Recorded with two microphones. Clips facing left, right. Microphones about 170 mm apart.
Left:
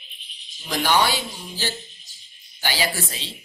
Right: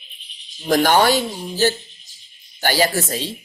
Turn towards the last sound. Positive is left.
turn(degrees=-45)  # may be behind; listen again after turning